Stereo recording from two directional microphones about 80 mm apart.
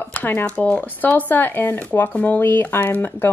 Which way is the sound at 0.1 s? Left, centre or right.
Left.